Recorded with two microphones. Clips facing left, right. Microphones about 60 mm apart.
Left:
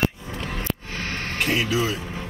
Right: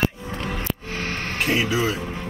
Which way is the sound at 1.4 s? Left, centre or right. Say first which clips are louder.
Right 1 dB; centre.